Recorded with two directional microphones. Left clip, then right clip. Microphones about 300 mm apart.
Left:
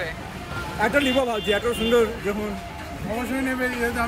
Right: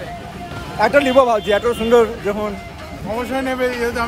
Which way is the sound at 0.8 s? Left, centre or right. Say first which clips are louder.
Right 8 dB; right.